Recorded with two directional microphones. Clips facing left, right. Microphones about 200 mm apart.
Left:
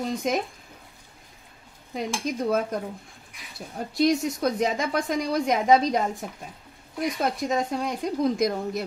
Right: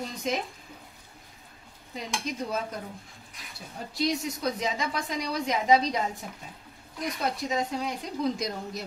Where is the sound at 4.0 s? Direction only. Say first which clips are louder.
Left 6 dB; 50° left (ahead or behind).